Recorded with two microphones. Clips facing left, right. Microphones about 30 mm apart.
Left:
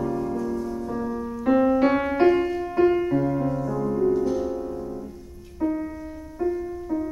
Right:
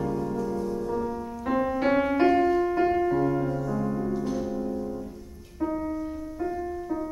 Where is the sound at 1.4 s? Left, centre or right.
Centre.